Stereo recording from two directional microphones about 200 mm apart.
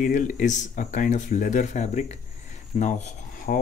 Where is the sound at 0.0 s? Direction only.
40° left (ahead or behind).